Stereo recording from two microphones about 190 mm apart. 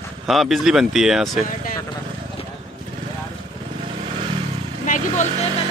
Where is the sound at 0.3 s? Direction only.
Centre (ahead or behind).